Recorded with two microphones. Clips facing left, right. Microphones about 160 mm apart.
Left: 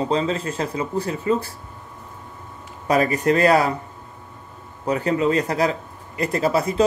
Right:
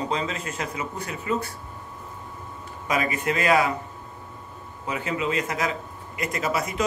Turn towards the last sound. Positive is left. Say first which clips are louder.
# left 7 dB
turn(degrees=30)  # may be behind; listen again after turning